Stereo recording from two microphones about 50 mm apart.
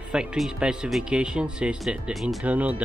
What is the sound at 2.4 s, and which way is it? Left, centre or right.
Speech, right.